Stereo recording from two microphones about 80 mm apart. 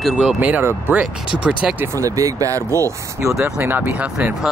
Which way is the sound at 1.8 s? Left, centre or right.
Right.